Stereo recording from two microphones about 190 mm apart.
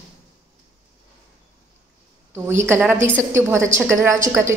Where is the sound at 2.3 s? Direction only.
15° right (ahead or behind).